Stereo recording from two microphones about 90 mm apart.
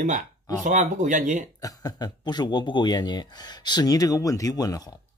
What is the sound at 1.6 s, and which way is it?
A man's voice, 45° left (ahead or behind).